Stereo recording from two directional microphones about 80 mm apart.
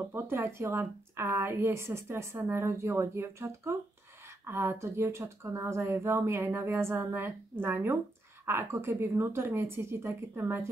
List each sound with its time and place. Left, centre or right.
0.1 s speech: right